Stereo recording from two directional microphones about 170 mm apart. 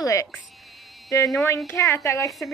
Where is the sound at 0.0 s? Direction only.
20° left (ahead or behind).